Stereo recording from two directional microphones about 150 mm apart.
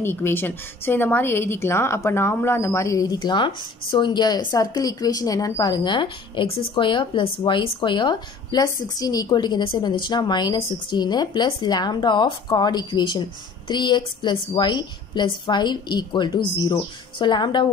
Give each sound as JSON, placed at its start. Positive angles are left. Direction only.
{"t": 0.0, "sound": "a woman's voice", "side_deg": 15}